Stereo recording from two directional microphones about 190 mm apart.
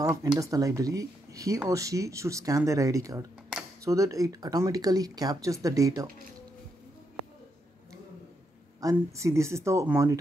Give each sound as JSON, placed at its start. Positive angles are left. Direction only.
{"t": 0.0, "sound": "speech", "side_deg": -15}
{"t": 8.8, "sound": "speech", "side_deg": -15}